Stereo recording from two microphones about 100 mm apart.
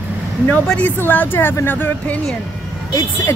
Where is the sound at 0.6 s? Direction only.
15° left (ahead or behind).